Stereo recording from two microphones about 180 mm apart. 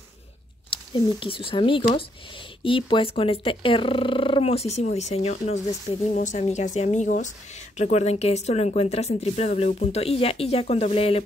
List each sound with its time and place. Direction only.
0.7 s speech: 30° left (ahead or behind)